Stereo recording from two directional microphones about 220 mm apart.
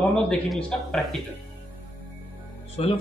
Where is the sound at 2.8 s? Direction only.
25° left (ahead or behind).